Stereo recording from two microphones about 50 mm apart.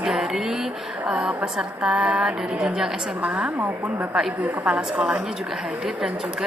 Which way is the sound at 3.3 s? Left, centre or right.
Centre.